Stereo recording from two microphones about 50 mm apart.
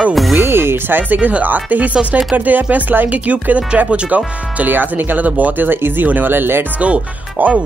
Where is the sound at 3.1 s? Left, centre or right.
Right.